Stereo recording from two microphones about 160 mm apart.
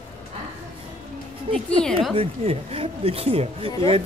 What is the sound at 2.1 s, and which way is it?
Speech, 35° right (ahead or behind).